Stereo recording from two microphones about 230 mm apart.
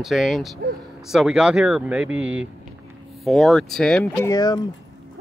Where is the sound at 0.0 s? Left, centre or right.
Centre.